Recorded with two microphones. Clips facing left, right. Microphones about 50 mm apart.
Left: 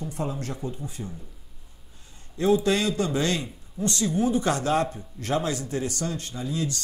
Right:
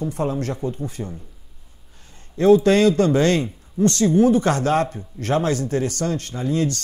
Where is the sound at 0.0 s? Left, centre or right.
Right.